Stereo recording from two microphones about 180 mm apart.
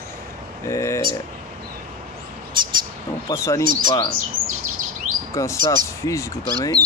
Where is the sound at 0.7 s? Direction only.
15° left (ahead or behind).